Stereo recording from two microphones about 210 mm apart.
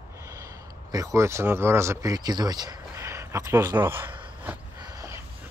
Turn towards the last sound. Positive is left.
turn(degrees=-10)  # may be behind; listen again after turning